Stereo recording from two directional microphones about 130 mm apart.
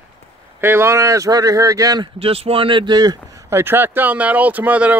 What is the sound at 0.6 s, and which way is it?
Speech, 20° right (ahead or behind).